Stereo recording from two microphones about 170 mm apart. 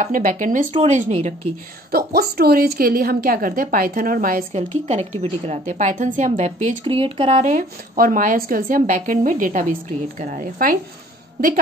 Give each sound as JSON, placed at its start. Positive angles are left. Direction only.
{"t": 0.0, "sound": "speech", "side_deg": -50}
{"t": 1.9, "sound": "a woman's voice", "side_deg": -65}
{"t": 4.6, "sound": "speech", "side_deg": -40}
{"t": 6.8, "sound": "speech", "side_deg": -30}